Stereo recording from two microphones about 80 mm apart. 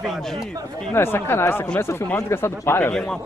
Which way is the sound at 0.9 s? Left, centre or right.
Left.